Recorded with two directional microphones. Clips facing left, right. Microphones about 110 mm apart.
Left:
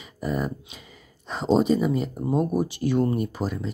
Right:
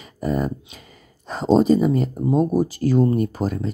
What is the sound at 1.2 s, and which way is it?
Speech, 40° right (ahead or behind).